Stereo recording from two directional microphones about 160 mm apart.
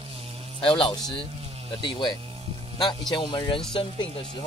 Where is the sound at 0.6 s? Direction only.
35° left (ahead or behind).